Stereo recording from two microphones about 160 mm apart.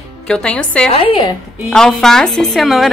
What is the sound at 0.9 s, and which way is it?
Speech, 35° left (ahead or behind).